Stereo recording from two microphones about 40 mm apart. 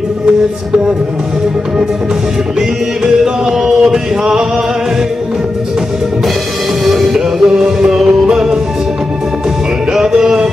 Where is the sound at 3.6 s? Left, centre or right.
Centre.